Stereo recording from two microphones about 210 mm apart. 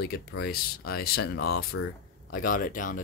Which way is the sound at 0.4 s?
50° left (ahead or behind).